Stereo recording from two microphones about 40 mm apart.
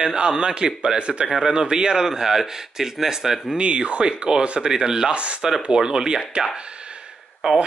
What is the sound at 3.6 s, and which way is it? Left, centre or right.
Speech, right.